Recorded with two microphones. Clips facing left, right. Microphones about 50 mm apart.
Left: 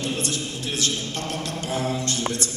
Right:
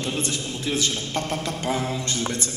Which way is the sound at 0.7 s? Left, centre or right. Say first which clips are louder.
Right 3 dB; right.